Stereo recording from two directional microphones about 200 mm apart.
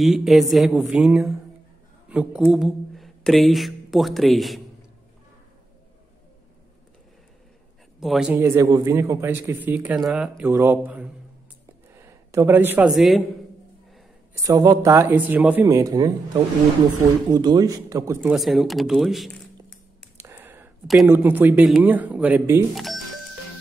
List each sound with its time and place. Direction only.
0.0 s speech: centre (ahead or behind)
8.0 s speech: centre (ahead or behind)
8.4 s speech: 15° right (ahead or behind)
14.3 s speech: 15° right (ahead or behind)
17.3 s speech: 20° right (ahead or behind)
18.3 s speech: centre (ahead or behind)
20.2 s a sound: 10° right (ahead or behind)
21.1 s speech: 10° right (ahead or behind)